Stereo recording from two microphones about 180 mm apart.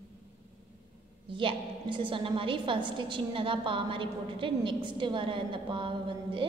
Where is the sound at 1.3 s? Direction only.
30° right (ahead or behind).